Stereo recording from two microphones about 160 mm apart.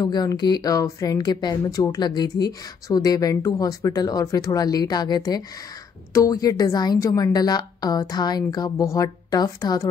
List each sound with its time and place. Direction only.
0.0 s speech: 25° left (ahead or behind)